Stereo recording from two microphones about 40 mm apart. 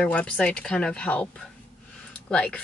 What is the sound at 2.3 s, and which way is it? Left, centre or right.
Speech, left.